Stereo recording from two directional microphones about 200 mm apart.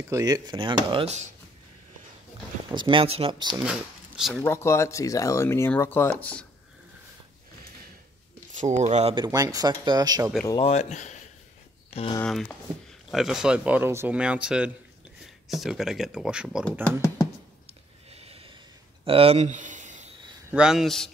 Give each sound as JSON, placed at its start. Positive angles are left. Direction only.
{"t": 0.1, "sound": "speech", "side_deg": -20}
{"t": 2.7, "sound": "speech", "side_deg": -25}
{"t": 4.2, "sound": "speech", "side_deg": 5}
{"t": 8.5, "sound": "speech", "side_deg": -35}
{"t": 9.2, "sound": "speech", "side_deg": -20}
{"t": 10.6, "sound": "speech", "side_deg": 35}
{"t": 12.2, "sound": "speech", "side_deg": 0}
{"t": 18.1, "sound": "snort", "side_deg": -30}
{"t": 19.0, "sound": "speech", "side_deg": -30}
{"t": 20.5, "sound": "speech", "side_deg": -5}